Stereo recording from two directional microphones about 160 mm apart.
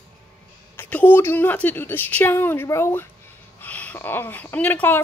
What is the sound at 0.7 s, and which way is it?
Speech, 10° left (ahead or behind).